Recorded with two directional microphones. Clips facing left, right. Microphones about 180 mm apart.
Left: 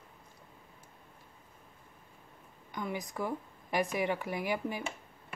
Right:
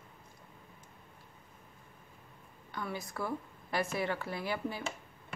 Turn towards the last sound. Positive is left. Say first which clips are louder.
# left 2 dB
turn(degrees=15)  # may be behind; listen again after turning